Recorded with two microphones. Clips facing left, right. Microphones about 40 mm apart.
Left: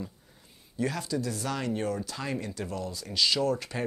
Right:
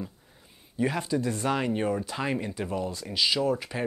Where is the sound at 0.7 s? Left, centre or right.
Right.